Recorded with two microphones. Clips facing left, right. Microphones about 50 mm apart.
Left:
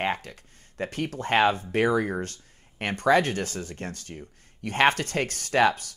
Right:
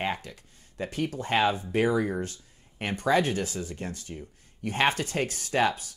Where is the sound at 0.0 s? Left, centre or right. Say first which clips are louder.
Left 3 dB; left.